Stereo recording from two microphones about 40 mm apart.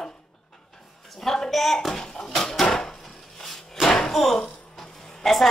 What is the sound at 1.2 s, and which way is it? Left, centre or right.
Speech, centre.